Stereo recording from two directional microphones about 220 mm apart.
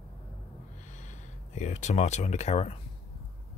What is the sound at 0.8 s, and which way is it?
Speech, 35° left (ahead or behind).